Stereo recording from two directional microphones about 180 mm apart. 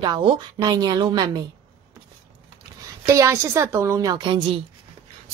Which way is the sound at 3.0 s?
15° right (ahead or behind).